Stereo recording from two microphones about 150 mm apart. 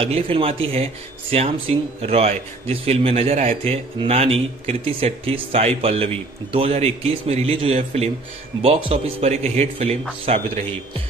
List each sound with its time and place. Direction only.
0.0 s speech: 40° right (ahead or behind)